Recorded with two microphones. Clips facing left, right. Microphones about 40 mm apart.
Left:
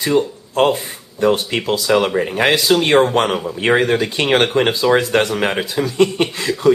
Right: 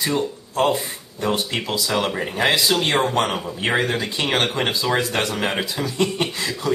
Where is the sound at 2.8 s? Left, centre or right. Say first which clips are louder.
Left 6 dB; centre.